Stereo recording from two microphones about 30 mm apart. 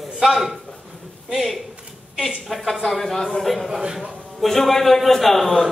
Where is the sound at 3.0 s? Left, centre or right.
Centre.